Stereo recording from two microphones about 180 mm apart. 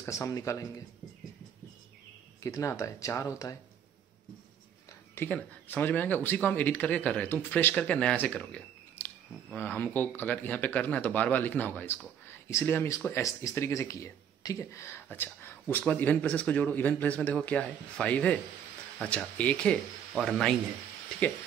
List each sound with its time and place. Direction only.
0.0 s speech: 15° left (ahead or behind)
2.4 s speech: 15° left (ahead or behind)
5.1 s speech: 10° left (ahead or behind)